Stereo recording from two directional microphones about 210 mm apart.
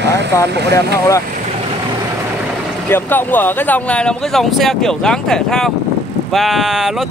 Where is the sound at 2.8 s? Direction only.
10° left (ahead or behind).